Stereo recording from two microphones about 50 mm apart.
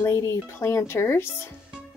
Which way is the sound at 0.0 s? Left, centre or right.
Left.